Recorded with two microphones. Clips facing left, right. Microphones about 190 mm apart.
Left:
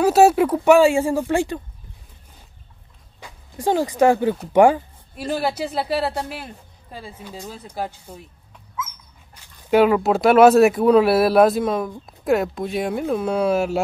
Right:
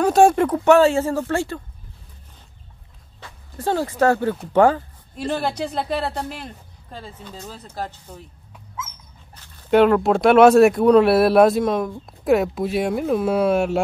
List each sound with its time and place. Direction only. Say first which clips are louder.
0.0 s speech: left 1 dB; 5° left (ahead or behind)
3.2 s speech: left 1 dB; 15° left (ahead or behind)
9.3 s speech: right 1 dB; 10° left (ahead or behind)